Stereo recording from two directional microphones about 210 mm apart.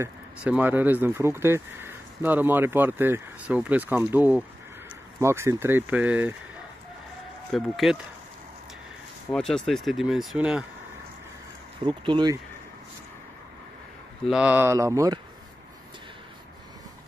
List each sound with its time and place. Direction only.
0.0 s speech: 5° right (ahead or behind)
7.5 s speech: centre (ahead or behind)
9.3 s speech: centre (ahead or behind)
11.8 s speech: 20° right (ahead or behind)
14.3 s speech: 5° right (ahead or behind)